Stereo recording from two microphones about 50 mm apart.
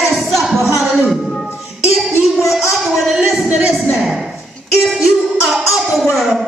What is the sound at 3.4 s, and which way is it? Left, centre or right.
Speech, right.